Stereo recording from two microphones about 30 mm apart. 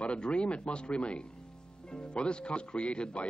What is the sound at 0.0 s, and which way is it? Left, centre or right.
Speech, left.